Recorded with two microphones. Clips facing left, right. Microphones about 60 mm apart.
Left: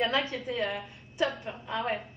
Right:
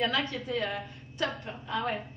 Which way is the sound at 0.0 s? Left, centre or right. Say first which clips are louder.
Left 1 dB; centre.